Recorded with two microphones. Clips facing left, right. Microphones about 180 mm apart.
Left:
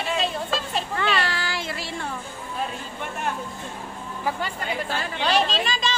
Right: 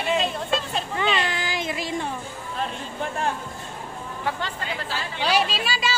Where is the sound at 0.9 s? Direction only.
20° right (ahead or behind).